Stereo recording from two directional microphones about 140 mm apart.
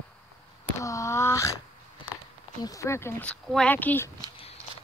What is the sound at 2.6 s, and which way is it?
Speech, 25° left (ahead or behind).